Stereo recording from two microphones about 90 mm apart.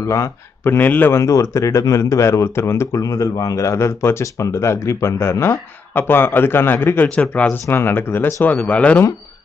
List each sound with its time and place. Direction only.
0.0 s speech: 35° left (ahead or behind)
0.7 s speech: 20° left (ahead or behind)
1.2 s speech: 35° left (ahead or behind); by 7.6 s 15° left (ahead or behind)
7.6 s speech: 25° left (ahead or behind)
8.5 s speech: 15° left (ahead or behind)